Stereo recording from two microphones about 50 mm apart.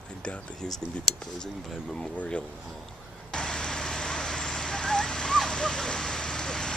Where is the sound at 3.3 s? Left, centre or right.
Centre.